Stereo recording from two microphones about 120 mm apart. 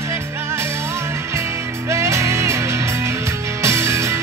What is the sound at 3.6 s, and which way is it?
Music, 25° right (ahead or behind).